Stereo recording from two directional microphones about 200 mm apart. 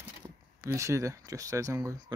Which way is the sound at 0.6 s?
15° right (ahead or behind).